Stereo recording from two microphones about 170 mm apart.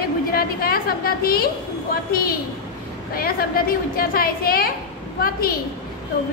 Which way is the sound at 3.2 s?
60° left (ahead or behind).